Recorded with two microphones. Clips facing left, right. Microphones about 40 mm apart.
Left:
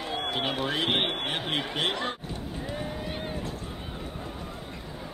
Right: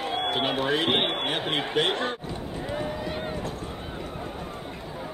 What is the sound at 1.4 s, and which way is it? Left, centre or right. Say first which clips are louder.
Speech: right 3 dB; right.